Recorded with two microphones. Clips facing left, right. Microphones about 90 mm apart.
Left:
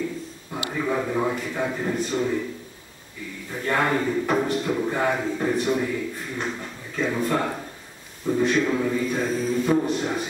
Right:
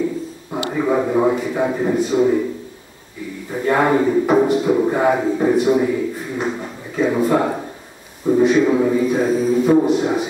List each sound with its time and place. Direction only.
0.5 s speech: 25° right (ahead or behind); by 2.2 s 10° right (ahead or behind)
3.5 s speech: 15° right (ahead or behind)